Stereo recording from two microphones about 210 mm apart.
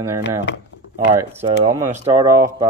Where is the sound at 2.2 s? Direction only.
15° right (ahead or behind).